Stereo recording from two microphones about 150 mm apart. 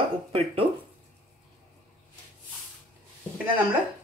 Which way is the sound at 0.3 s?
40° right (ahead or behind).